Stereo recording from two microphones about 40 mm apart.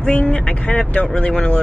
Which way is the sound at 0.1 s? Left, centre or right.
Left.